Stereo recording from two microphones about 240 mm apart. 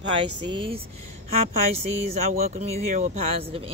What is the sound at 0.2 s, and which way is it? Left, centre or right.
Speech, right.